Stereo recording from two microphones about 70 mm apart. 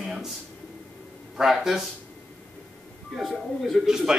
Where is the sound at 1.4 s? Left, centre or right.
Centre.